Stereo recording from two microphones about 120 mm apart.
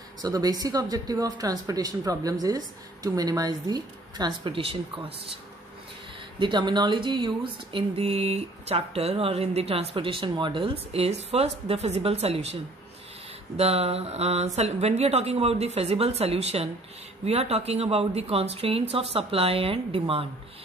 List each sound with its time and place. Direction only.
0.2 s speech: 30° right (ahead or behind)
4.6 s a woman's voice: 50° right (ahead or behind)
6.4 s speech: 40° right (ahead or behind); by 12.5 s 60° right (ahead or behind)
13.6 s a woman's voice: 60° right (ahead or behind)